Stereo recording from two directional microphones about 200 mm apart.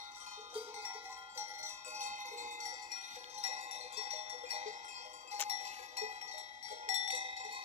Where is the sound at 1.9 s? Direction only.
40° right (ahead or behind).